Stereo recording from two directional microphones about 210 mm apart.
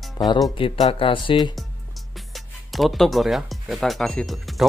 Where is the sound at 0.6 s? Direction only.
30° left (ahead or behind).